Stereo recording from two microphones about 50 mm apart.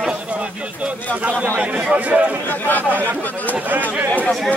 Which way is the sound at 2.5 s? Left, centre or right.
Left.